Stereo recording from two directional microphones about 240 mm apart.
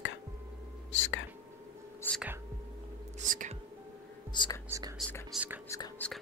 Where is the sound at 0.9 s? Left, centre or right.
Left.